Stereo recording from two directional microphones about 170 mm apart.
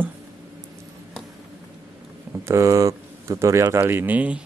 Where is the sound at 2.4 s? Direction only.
15° right (ahead or behind).